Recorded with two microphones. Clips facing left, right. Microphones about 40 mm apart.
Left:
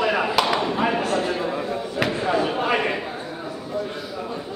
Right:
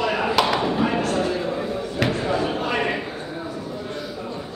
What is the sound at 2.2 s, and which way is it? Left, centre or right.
Slam, centre.